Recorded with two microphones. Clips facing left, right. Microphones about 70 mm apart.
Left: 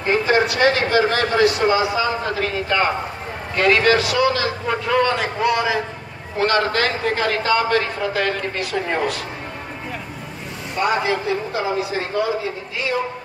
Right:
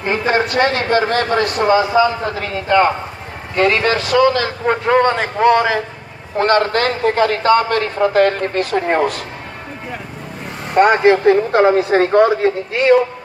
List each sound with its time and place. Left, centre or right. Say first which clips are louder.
0.1 s a man's voice: right 1 dB; right
10.7 s a man's voice: right 9 dB; right